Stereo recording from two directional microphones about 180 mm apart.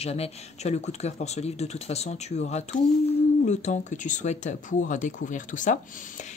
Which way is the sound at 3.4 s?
40° left (ahead or behind).